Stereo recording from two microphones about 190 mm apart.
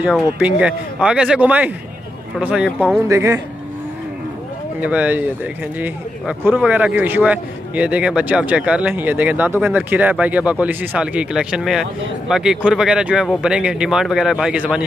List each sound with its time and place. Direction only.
0.0 s a man's voice: 5° right (ahead or behind)
3.1 s a man's voice: 15° right (ahead or behind)
4.7 s a man's voice: 10° right (ahead or behind)